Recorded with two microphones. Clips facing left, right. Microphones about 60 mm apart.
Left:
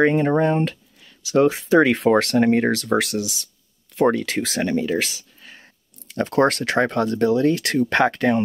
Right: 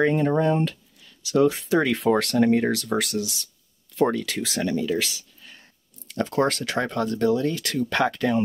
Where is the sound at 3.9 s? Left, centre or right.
Left.